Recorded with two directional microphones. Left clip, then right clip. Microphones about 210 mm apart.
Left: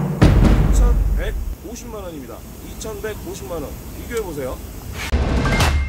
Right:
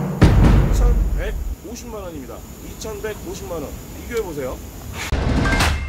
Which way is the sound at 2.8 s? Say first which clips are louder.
Even; 10° left (ahead or behind).